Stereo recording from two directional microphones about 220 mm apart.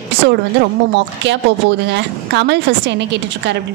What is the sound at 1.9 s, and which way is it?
Speech, 50° right (ahead or behind).